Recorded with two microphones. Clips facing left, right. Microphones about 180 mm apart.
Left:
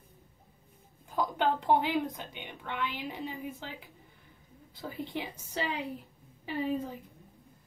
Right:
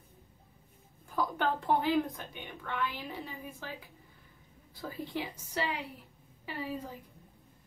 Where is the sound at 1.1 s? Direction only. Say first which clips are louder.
Left 2 dB; 20° left (ahead or behind).